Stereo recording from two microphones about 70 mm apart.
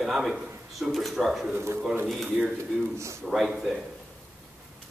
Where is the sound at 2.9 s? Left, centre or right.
Right.